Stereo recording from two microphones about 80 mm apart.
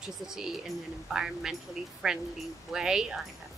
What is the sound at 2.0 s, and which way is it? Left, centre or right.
Speech, centre.